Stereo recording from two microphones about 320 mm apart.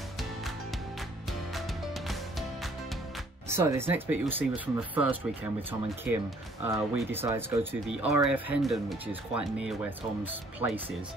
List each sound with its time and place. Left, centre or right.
3.4 s speech: centre